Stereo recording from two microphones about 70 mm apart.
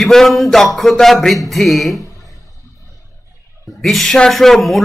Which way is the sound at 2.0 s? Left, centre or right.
Left.